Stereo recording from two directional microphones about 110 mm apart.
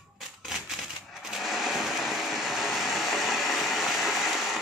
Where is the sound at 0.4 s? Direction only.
5° right (ahead or behind).